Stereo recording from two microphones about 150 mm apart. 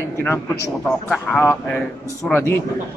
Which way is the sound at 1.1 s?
10° left (ahead or behind).